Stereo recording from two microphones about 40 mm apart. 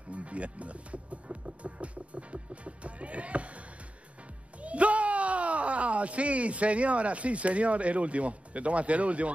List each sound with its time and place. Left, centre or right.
0.1 s music: right
4.6 s speech: right